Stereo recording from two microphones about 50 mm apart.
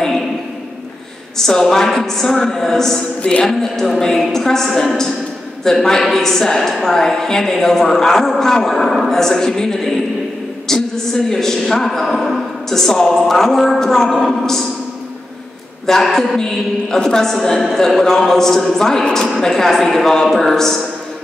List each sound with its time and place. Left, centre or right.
1.4 s a woman's voice: centre
3.2 s music: left
3.4 s a woman's voice: centre
15.9 s a woman's voice: centre